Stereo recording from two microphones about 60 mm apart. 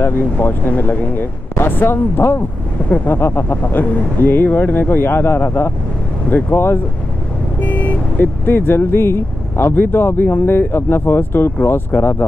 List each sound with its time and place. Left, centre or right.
0.0 s speech: left
7.6 s speech: left